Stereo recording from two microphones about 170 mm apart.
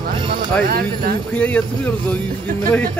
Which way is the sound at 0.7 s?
65° right (ahead or behind).